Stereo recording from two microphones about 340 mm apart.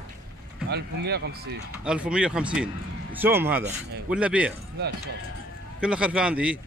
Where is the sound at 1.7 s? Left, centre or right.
Centre.